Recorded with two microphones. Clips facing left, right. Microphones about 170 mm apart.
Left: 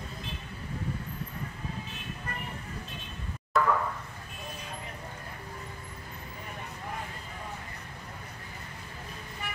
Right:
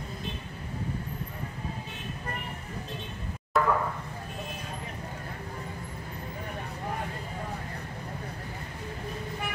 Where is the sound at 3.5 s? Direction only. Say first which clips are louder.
Right 1 dB; centre (ahead or behind).